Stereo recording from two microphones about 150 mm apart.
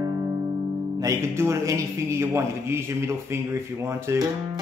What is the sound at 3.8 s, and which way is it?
Music, 15° right (ahead or behind).